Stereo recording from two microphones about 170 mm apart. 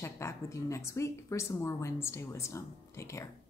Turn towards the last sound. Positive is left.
turn(degrees=15)  # may be behind; listen again after turning